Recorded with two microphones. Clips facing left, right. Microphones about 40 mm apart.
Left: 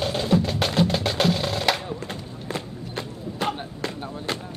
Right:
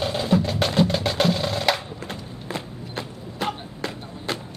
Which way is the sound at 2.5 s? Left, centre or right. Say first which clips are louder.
Even; centre.